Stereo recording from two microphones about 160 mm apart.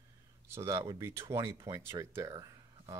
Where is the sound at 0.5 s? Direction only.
15° right (ahead or behind).